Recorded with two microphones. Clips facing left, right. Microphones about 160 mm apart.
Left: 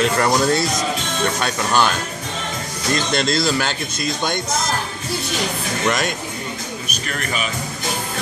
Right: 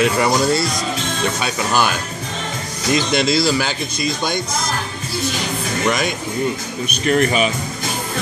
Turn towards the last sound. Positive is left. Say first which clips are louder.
# right 10 dB
turn(degrees=-40)  # may be behind; listen again after turning